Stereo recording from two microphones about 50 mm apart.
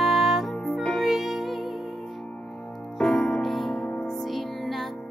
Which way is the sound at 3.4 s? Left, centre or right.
Centre.